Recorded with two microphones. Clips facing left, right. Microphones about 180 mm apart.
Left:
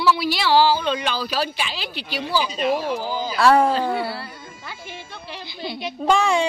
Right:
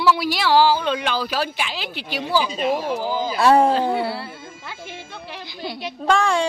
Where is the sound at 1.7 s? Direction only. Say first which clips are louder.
Right 1 dB; 15° right (ahead or behind).